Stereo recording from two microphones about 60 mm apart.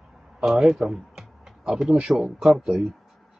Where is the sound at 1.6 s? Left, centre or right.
Centre.